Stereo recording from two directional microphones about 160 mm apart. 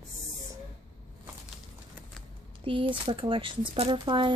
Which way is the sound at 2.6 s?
35° right (ahead or behind).